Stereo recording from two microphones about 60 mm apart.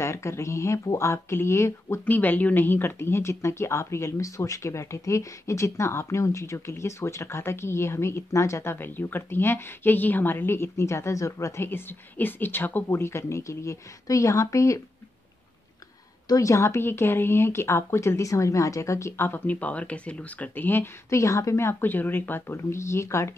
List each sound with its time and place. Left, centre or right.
0.0 s speech: left
2.0 s speech: left
8.7 s speech: left
11.6 s speech: left
13.0 s speech: left
16.3 s speech: left
21.2 s speech: left
21.8 s speech: left
22.5 s speech: left